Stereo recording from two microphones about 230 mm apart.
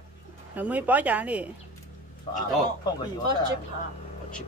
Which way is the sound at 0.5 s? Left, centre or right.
Centre.